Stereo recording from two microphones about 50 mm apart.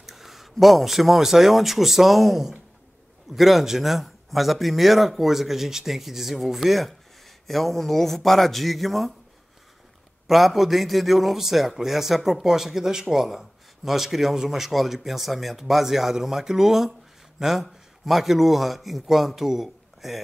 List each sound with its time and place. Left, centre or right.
0.0 s a man's voice: centre
10.2 s a man's voice: centre